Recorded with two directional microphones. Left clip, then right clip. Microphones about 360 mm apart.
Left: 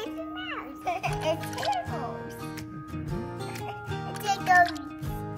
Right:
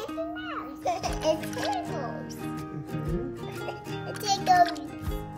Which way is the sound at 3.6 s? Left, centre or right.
Centre.